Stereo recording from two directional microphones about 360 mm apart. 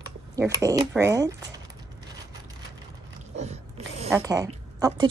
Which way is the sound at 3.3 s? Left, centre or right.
Centre.